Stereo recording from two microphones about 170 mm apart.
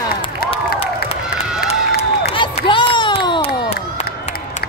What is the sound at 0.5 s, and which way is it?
Crowd, 35° left (ahead or behind).